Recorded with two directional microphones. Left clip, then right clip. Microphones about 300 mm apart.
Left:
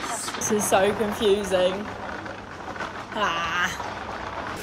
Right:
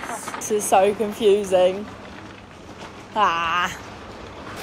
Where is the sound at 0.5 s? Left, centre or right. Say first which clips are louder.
Right 4 dB; centre.